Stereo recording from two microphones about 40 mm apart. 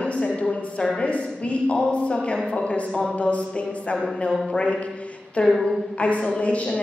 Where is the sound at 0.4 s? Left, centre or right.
Left.